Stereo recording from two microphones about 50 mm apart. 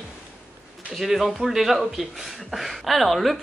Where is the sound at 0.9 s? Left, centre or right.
Centre.